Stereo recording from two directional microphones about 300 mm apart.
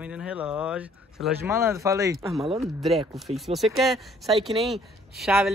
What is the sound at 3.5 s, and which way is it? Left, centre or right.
Speech, centre.